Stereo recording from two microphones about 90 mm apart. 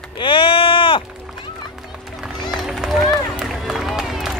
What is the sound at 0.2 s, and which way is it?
Sheep, 70° left (ahead or behind).